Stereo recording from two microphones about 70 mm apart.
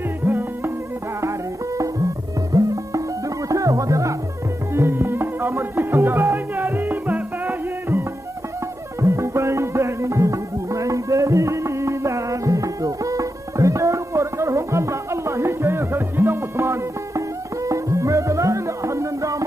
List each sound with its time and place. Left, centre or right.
0.2 s music: right
2.5 s music: right
4.7 s music: right
9.0 s music: right